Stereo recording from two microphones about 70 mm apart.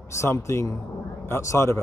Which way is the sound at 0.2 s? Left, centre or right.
Left.